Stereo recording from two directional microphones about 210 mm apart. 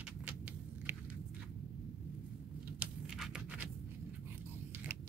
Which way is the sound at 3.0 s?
Centre (ahead or behind).